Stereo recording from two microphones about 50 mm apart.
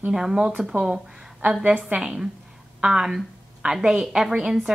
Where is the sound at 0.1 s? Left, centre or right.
Centre.